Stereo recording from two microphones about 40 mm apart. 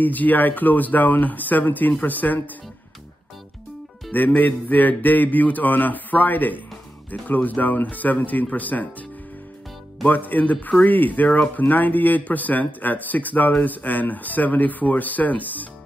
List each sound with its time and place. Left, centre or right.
0.0 s a man's voice: left
4.4 s a man's voice: left
10.0 s a man's voice: left
11.6 s a man's voice: left